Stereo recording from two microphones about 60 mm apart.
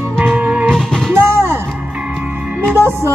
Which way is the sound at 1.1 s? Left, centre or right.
Right.